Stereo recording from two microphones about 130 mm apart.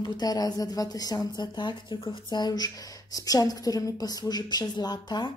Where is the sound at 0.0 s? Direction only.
35° left (ahead or behind).